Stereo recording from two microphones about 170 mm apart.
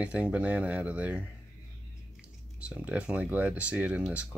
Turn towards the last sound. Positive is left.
turn(degrees=-5)  # may be behind; listen again after turning